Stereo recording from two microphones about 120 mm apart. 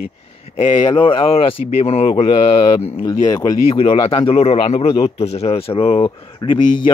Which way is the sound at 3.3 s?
30° left (ahead or behind).